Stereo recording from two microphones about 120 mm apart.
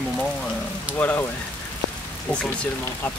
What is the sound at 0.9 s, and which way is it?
Speech, 15° left (ahead or behind).